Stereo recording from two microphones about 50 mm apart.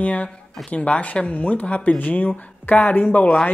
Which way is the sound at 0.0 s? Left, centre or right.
Left.